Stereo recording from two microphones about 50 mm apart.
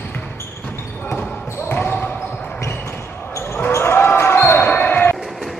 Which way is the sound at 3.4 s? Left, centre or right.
Left.